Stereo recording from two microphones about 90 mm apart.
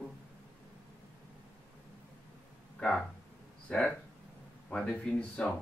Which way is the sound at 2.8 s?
5° left (ahead or behind).